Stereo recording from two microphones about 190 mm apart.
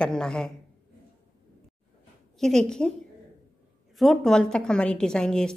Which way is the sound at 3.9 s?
Centre (ahead or behind).